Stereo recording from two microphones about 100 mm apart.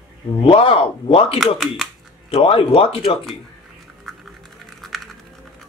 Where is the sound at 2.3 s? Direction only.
70° left (ahead or behind).